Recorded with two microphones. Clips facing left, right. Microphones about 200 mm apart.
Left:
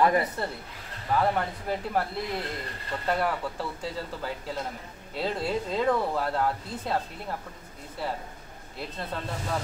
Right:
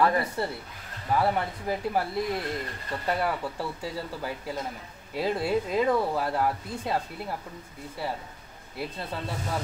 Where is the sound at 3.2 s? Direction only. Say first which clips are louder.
Even; 10° right (ahead or behind).